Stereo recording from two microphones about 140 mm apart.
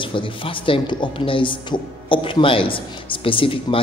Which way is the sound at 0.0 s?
40° left (ahead or behind).